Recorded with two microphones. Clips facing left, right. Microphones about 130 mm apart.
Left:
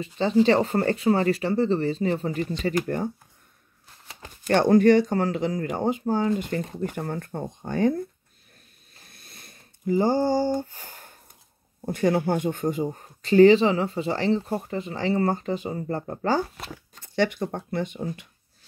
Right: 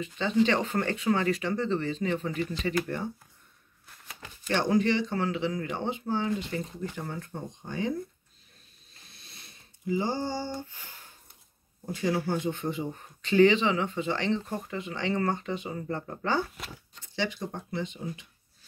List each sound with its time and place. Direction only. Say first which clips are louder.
0.0 s speech: left 5 dB; 35° left (ahead or behind)
4.5 s speech: left 8 dB; 50° left (ahead or behind)
6.6 s speech: left 6 dB; 55° left (ahead or behind)
9.0 s a sound: left 3 dB; 50° left (ahead or behind)
11.8 s speech: left 6 dB; 55° left (ahead or behind); by 16.7 s 35° left (ahead or behind)
16.9 s speech: left 8 dB; 55° left (ahead or behind)